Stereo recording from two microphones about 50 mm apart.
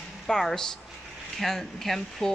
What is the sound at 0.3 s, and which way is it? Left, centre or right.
Speech, centre.